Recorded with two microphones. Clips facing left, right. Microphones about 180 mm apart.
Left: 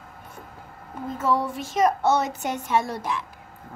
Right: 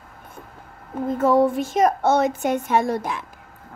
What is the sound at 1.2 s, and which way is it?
A woman's voice, 50° right (ahead or behind).